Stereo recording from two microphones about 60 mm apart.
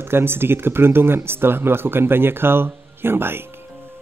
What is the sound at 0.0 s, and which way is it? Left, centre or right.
A man's voice, right.